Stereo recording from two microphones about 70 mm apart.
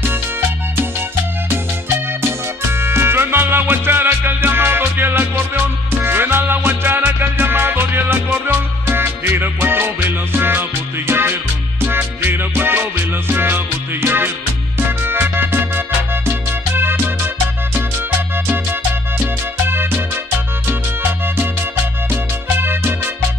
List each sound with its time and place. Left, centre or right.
2.2 s music: right
18.5 s music: right